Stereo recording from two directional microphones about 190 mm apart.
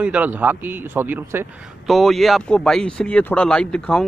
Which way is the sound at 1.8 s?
Centre (ahead or behind).